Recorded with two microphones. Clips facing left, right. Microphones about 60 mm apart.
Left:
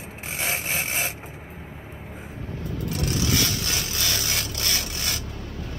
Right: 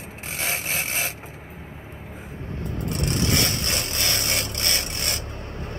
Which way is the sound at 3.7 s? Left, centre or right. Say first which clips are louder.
Right 1 dB; right.